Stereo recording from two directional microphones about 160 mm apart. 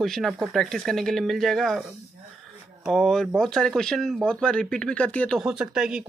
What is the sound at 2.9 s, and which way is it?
Speech, centre (ahead or behind).